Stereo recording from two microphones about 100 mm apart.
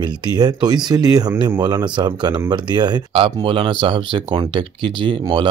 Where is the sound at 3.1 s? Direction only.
60° right (ahead or behind).